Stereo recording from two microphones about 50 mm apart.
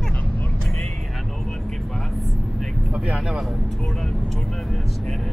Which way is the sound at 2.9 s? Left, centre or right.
Centre.